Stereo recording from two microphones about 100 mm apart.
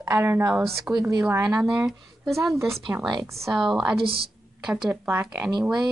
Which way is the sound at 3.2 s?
30° right (ahead or behind).